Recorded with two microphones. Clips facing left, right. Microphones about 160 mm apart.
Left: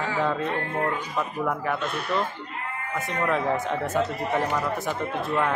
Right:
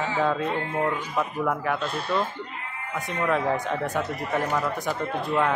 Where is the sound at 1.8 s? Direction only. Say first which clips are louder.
Even; 30° right (ahead or behind).